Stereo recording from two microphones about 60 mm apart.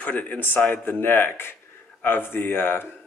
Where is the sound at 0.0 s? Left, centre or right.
Left.